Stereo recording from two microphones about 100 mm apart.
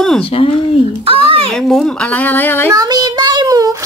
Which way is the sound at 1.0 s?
65° right (ahead or behind).